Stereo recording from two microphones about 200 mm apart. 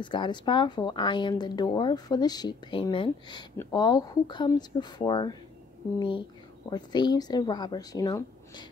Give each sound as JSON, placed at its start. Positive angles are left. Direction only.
{"t": 0.0, "sound": "speech", "side_deg": 25}